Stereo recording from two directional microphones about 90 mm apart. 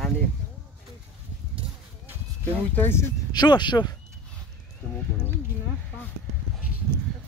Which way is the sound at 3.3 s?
55° left (ahead or behind).